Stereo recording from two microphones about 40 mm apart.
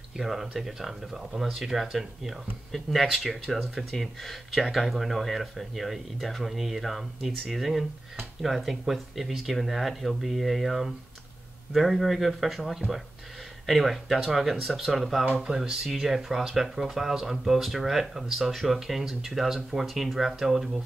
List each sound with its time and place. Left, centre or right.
0.2 s speech: centre
15.4 s speech: centre
15.9 s speech: centre
18.8 s speech: centre